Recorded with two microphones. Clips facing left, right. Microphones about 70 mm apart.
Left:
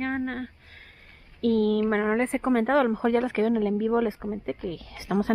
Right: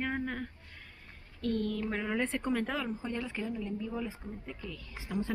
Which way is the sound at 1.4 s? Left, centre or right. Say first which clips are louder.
Left 11 dB; left.